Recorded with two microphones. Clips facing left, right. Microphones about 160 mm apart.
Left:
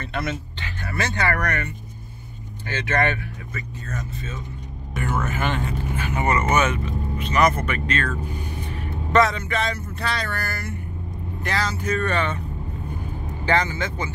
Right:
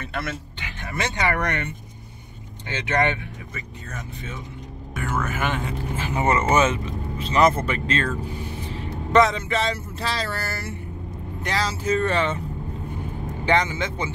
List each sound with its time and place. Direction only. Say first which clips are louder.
0.0 s speech: left 2 dB; centre (ahead or behind)
0.6 s speech: left 1 dB; 15° right (ahead or behind)
4.9 s speech: left 1 dB; centre (ahead or behind)
5.7 s speech: left 1 dB; 25° right (ahead or behind)
13.5 s speech: right 1 dB; 20° right (ahead or behind)